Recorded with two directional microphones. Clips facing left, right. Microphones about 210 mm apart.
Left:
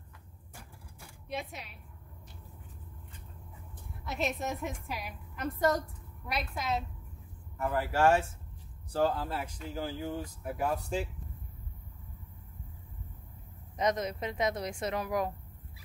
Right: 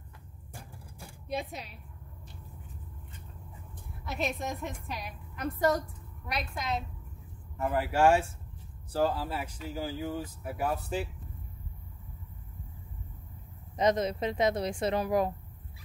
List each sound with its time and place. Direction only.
0.9 s a sound: 35° right (ahead or behind)
4.0 s a woman's voice: centre (ahead or behind)
7.5 s a woman's voice: 15° right (ahead or behind)
13.7 s speech: 30° right (ahead or behind)